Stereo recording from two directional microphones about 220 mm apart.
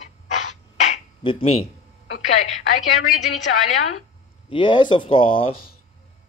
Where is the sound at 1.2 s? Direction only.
25° left (ahead or behind).